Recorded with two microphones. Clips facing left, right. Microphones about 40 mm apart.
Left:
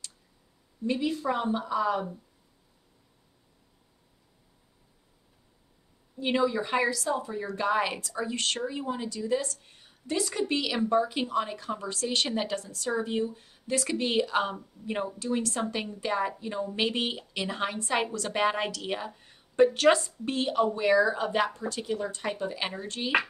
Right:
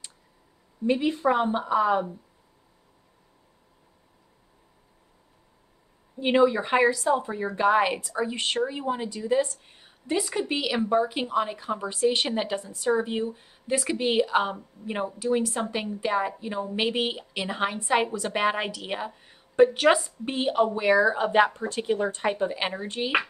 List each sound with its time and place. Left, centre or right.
0.8 s a woman's voice: right
6.1 s a woman's voice: right